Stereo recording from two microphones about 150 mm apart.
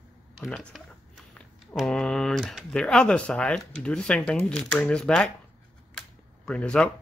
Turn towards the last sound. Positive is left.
turn(degrees=5)  # may be behind; listen again after turning